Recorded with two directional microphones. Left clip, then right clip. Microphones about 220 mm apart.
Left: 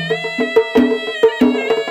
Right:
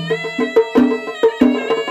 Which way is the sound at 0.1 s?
40° left (ahead or behind).